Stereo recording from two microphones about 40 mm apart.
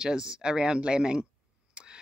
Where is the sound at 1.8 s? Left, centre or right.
Right.